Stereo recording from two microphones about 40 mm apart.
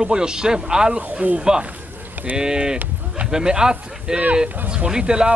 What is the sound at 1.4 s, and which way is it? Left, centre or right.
A man's voice, right.